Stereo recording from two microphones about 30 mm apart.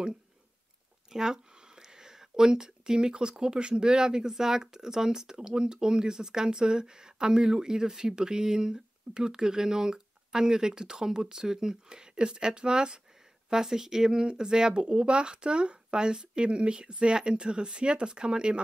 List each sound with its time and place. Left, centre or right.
1.1 s speech: centre